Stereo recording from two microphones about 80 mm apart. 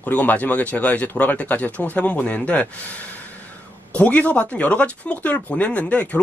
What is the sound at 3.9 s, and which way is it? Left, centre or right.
A man's voice, centre.